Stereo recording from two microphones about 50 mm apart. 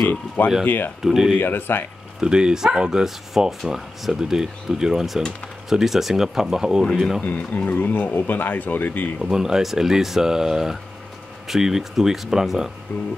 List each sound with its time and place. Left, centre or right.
0.7 s speech: left
1.0 s speech: centre
1.4 s speech: left
2.1 s speech: centre
7.2 s speech: left
7.7 s speech: left
9.2 s speech: centre